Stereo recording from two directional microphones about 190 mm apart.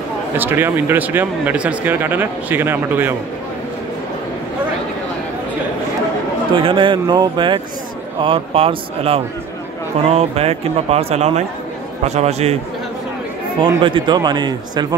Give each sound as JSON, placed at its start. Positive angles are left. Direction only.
{"t": 0.4, "sound": "speech", "side_deg": -10}
{"t": 6.5, "sound": "speech", "side_deg": -25}
{"t": 13.6, "sound": "speech", "side_deg": -25}